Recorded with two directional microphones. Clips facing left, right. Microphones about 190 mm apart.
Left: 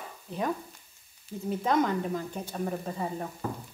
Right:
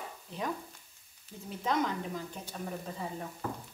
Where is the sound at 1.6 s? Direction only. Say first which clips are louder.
Left 5 dB; 50° left (ahead or behind).